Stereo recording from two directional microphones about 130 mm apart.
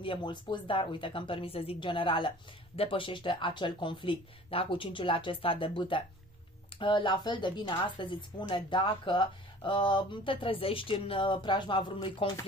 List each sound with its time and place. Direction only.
0.0 s speech: 40° left (ahead or behind)